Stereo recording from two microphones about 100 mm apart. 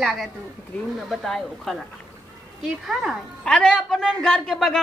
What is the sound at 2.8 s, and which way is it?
Speech, 5° right (ahead or behind).